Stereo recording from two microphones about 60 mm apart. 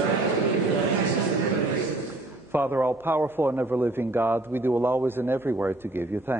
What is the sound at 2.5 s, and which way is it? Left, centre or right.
A man's voice, right.